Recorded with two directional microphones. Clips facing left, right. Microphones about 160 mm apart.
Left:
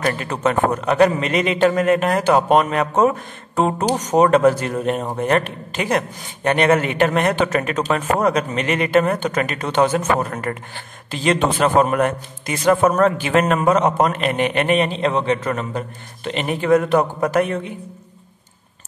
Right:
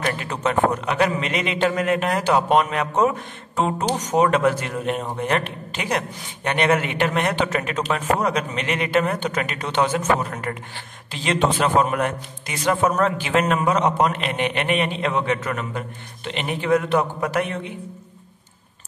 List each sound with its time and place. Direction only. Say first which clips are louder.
0.0 s speech: left 4 dB; 45° left (ahead or behind)